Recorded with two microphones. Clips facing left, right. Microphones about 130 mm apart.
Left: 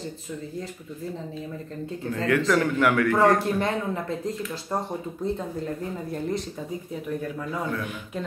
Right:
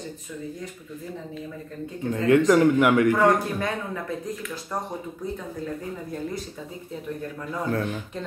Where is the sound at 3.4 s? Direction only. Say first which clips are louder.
Left 3 dB; 25° left (ahead or behind).